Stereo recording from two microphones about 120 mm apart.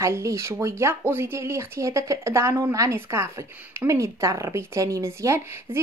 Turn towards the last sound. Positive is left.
turn(degrees=-25)  # may be behind; listen again after turning